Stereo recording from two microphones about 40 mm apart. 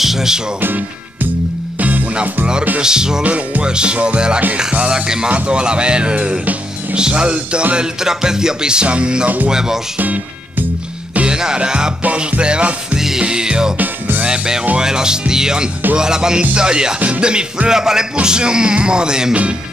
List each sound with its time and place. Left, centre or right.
0.0 s music: centre
1.8 s music: right
2.8 s music: centre
3.3 s music: right
3.6 s music: right
5.5 s speech: right
7.0 s music: right
9.9 s speech: right
11.2 s music: centre
13.7 s music: right
14.2 s music: right